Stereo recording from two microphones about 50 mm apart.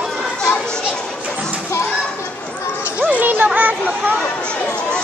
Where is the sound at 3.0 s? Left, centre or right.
Right.